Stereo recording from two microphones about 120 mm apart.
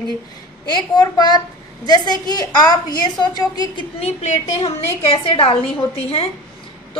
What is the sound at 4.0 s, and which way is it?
Speech, 70° left (ahead or behind).